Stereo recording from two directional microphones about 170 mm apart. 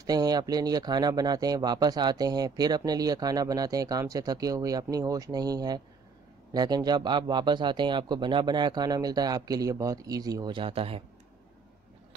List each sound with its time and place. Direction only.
0.0 s speech: 25° right (ahead or behind)